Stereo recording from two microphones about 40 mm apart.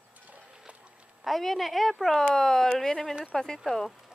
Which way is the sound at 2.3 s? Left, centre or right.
Centre.